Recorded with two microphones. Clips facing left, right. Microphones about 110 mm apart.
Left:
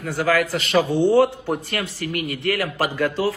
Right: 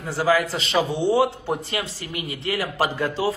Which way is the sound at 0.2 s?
25° right (ahead or behind).